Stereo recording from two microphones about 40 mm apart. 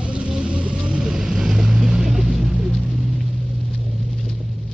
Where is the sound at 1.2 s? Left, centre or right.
Centre.